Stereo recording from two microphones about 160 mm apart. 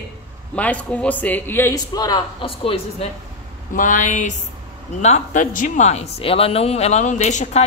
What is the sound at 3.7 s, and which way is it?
Speech, 55° left (ahead or behind).